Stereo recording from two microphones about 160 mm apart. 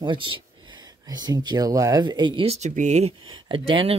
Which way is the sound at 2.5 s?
45° right (ahead or behind).